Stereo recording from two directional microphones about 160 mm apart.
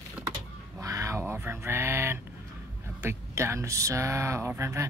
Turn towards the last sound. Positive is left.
turn(degrees=-15)  # may be behind; listen again after turning